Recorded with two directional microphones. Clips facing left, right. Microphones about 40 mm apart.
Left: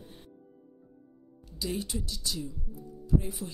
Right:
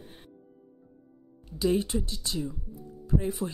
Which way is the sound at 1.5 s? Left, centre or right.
Right.